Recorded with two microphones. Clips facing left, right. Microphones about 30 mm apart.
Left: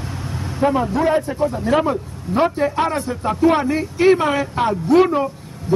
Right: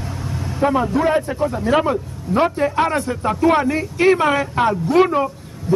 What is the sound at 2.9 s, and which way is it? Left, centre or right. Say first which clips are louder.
A woman's voice: right 1 dB; right.